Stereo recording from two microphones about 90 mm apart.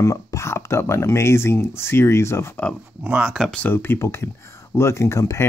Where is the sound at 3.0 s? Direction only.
15° right (ahead or behind).